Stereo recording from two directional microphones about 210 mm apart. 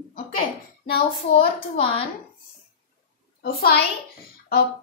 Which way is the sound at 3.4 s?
50° left (ahead or behind).